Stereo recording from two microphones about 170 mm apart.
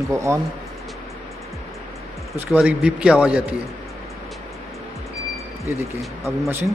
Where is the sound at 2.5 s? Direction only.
5° right (ahead or behind).